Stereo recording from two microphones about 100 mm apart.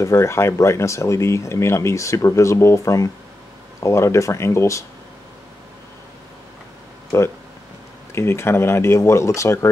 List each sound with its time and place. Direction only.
0.0 s speech: 30° left (ahead or behind)
8.1 s speech: 25° left (ahead or behind)